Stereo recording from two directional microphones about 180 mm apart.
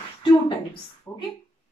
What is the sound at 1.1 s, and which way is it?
Speech, 15° left (ahead or behind).